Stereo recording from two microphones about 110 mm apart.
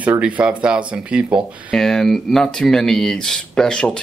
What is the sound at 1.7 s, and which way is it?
Speech, 5° left (ahead or behind).